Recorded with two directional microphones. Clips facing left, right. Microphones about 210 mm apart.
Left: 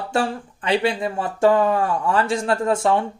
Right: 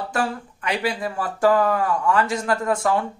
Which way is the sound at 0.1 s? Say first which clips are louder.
Left 5 dB; 30° left (ahead or behind).